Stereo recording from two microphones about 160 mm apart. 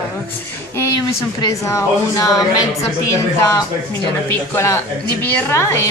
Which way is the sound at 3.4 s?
20° left (ahead or behind).